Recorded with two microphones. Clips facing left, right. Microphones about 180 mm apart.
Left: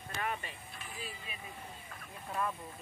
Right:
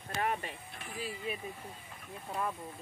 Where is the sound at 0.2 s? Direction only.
60° right (ahead or behind).